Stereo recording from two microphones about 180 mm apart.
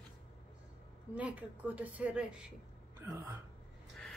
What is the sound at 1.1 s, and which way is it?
A man's voice, 10° right (ahead or behind).